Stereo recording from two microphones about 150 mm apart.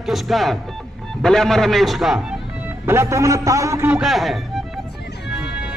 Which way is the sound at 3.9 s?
Centre (ahead or behind).